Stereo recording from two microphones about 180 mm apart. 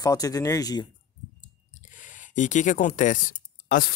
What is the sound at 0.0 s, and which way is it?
Speech, 20° left (ahead or behind).